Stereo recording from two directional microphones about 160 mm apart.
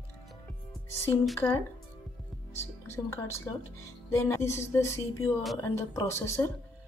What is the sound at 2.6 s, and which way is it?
Speech, 15° left (ahead or behind).